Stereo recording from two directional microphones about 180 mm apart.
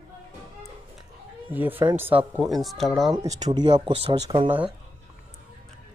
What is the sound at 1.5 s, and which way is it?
Speech, 10° right (ahead or behind).